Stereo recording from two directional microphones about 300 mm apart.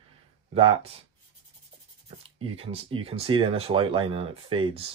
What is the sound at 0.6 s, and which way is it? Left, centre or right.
Speech, centre.